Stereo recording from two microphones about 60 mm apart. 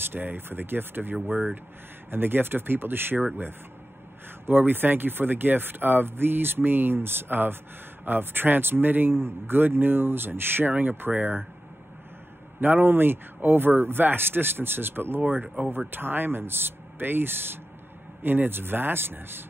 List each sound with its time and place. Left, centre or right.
0.1 s speech: right
4.5 s speech: right
12.5 s speech: right
15.4 s speech: centre
15.9 s speech: right